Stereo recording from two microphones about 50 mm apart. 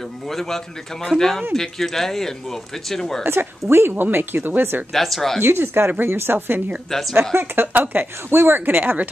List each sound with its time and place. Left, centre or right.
0.3 s speech: centre
3.3 s speech: right
4.9 s speech: centre
5.4 s speech: right
6.9 s speech: centre
7.6 s a woman's voice: right